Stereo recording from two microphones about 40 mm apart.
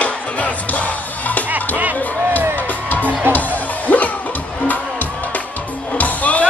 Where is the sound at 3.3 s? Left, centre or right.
Left.